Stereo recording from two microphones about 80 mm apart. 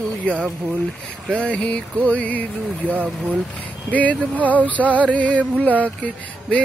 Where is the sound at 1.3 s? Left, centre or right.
Centre.